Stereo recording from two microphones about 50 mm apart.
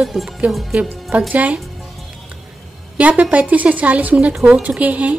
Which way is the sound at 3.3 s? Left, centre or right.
Right.